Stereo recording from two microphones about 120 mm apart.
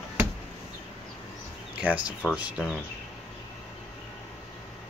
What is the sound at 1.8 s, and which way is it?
Speech, 10° right (ahead or behind).